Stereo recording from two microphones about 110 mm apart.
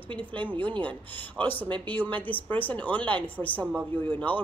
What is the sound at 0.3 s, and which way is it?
A woman's voice, 15° left (ahead or behind).